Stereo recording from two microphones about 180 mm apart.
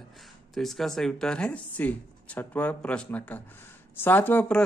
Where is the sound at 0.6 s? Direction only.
Centre (ahead or behind).